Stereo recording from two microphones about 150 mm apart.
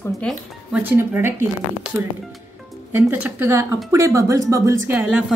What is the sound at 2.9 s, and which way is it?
Speech, 10° right (ahead or behind).